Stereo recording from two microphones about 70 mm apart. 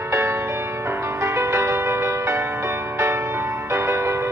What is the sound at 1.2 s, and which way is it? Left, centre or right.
Music, right.